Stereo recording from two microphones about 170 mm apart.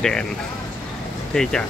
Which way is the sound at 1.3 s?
5° left (ahead or behind).